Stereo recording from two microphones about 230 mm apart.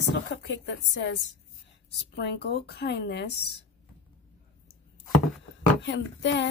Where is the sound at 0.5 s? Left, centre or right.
Left.